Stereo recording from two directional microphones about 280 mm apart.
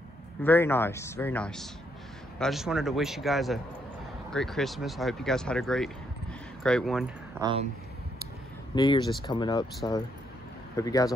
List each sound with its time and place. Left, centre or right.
0.4 s speech: centre
7.3 s speech: centre
8.7 s speech: centre
10.8 s speech: centre